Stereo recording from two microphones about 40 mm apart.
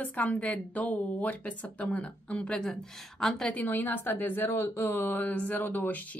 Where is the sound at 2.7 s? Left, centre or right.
Centre.